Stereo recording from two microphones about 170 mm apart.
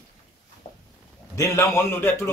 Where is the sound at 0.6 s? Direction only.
45° left (ahead or behind).